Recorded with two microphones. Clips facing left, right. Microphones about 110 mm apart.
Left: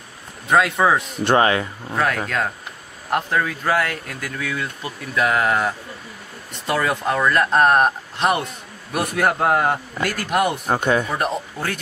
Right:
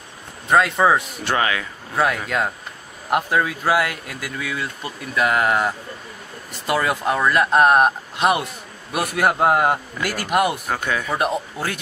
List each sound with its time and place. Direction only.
0.5 s speech: centre (ahead or behind)
1.2 s speech: 35° left (ahead or behind)
2.2 s a man's voice: 10° right (ahead or behind)
10.7 s speech: 30° left (ahead or behind)
11.1 s speech: 5° right (ahead or behind)